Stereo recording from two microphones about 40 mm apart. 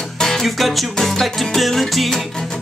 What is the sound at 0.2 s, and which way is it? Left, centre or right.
Music, centre.